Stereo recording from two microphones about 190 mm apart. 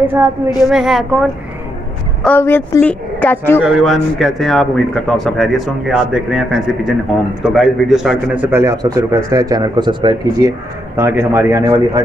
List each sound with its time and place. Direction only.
0.7 s speech: centre (ahead or behind)
2.2 s a woman's voice: 10° left (ahead or behind)
3.6 s a man's voice: centre (ahead or behind); by 10.5 s 25° right (ahead or behind)
11.0 s a man's voice: 15° right (ahead or behind)